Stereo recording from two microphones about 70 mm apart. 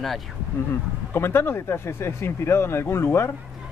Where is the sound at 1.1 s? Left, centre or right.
Left.